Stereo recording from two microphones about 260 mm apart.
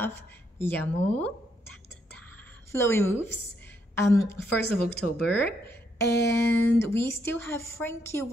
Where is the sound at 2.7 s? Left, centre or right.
Centre.